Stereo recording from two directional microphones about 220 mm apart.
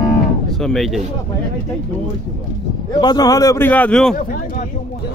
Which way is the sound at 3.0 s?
20° left (ahead or behind).